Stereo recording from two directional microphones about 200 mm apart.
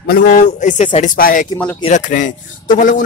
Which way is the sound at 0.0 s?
45° left (ahead or behind).